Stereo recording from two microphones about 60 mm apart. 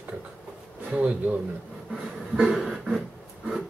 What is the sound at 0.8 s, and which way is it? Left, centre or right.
Speech, centre.